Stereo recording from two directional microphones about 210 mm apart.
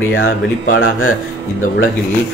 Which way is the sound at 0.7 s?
75° left (ahead or behind).